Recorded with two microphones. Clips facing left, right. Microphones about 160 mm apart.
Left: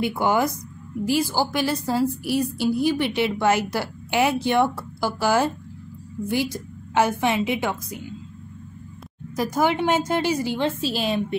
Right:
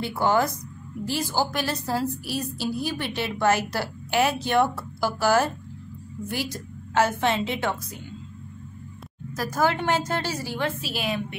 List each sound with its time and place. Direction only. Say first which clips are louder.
0.0 s a woman's voice: left 2 dB; 15° left (ahead or behind)
6.5 s a woman's voice: left 2 dB; 15° left (ahead or behind)
9.3 s a woman's voice: left 3 dB; 15° left (ahead or behind)